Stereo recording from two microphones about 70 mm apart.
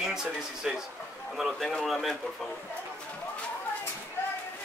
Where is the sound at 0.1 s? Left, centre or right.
Centre.